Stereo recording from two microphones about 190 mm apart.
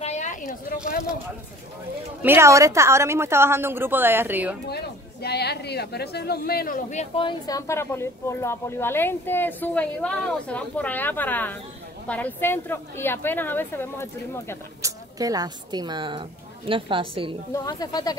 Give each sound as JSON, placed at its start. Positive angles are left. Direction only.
{"t": 0.0, "sound": "a sound", "side_deg": 40}
{"t": 2.2, "sound": "a woman's voice", "side_deg": -15}
{"t": 4.6, "sound": "speech", "side_deg": 60}
{"t": 14.8, "sound": "a woman's voice", "side_deg": -15}
{"t": 17.5, "sound": "speech", "side_deg": 20}